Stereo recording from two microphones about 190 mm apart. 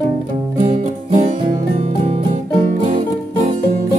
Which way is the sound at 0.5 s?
40° right (ahead or behind).